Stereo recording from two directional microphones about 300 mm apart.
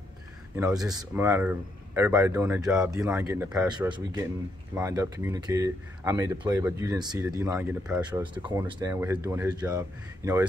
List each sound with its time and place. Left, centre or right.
0.6 s speech: centre